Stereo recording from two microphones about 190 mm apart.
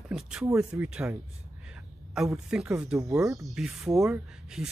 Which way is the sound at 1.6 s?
5° right (ahead or behind).